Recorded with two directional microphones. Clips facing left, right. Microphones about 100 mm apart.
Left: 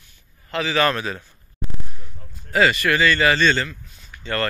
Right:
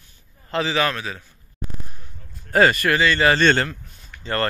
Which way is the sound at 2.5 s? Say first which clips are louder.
Right 1 dB; 40° right (ahead or behind).